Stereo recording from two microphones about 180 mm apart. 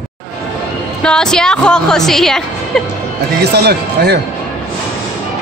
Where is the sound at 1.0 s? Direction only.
5° left (ahead or behind).